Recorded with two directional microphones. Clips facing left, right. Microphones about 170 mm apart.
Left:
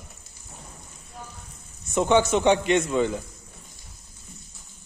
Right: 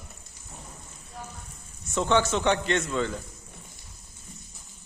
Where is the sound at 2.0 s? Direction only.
15° left (ahead or behind).